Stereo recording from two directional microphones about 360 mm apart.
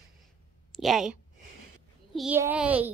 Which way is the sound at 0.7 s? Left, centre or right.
Centre.